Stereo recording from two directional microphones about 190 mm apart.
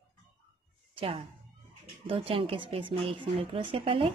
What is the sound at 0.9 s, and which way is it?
A woman's voice, 25° right (ahead or behind).